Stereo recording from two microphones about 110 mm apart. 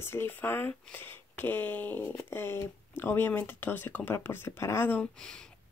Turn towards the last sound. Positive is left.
turn(degrees=20)  # may be behind; listen again after turning